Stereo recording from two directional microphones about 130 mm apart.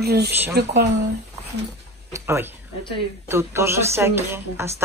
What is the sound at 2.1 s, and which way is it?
Speech, 20° right (ahead or behind).